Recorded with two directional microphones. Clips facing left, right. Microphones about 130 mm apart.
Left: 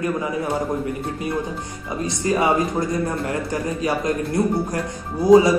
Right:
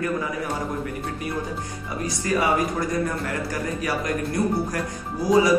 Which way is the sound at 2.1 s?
25° left (ahead or behind).